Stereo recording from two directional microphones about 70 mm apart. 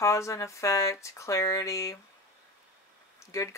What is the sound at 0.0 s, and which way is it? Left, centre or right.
Speech, left.